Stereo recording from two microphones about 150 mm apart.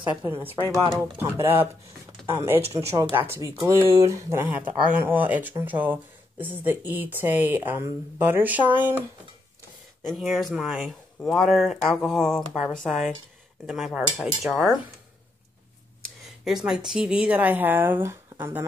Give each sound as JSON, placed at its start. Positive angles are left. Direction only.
{"t": 0.4, "sound": "speech", "side_deg": -15}
{"t": 10.0, "sound": "speech", "side_deg": 0}
{"t": 16.4, "sound": "speech", "side_deg": -5}